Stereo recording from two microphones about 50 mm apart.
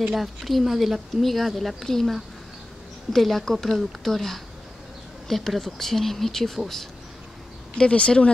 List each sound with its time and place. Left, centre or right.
0.0 s speech: centre
7.7 s speech: left